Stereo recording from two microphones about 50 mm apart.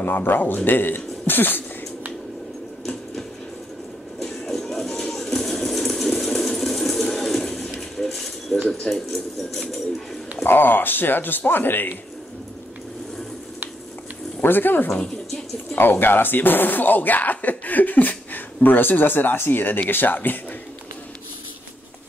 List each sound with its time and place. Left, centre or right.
0.0 s speech: left
2.8 s a sound: centre
4.2 s music: centre
8.0 s a sound: centre
9.1 s speech: centre
10.4 s speech: left
14.4 s speech: left